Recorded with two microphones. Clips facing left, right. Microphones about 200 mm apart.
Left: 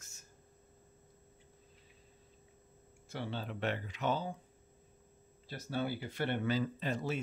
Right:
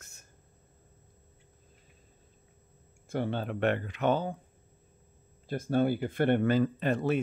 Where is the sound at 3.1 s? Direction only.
55° right (ahead or behind).